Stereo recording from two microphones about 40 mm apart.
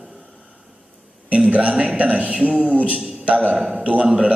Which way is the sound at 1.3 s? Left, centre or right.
Right.